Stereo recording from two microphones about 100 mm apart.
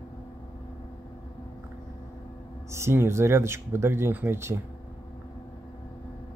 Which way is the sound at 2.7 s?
25° right (ahead or behind).